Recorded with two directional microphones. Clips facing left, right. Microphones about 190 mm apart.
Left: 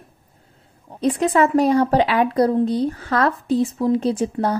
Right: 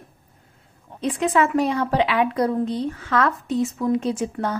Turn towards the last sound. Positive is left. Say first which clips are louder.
# left 4 dB
turn(degrees=35)  # may be behind; listen again after turning